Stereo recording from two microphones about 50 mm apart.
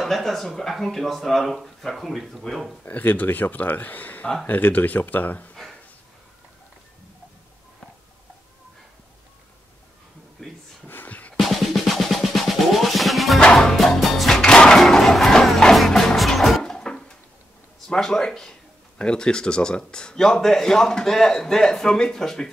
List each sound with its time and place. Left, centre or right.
0.0 s speech: centre
2.9 s speech: left
10.4 s a sound: centre
10.9 s a sound: left
11.3 s drum: centre
13.4 s music: centre
14.4 s music: centre
16.6 s a sound: centre
17.8 s speech: centre